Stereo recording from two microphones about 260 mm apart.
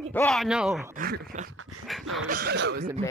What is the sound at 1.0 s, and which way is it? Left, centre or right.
Speech, right.